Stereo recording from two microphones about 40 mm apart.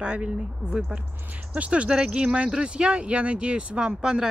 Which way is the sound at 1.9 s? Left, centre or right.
Right.